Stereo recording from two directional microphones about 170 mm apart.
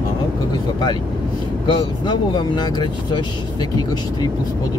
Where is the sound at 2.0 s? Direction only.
25° left (ahead or behind).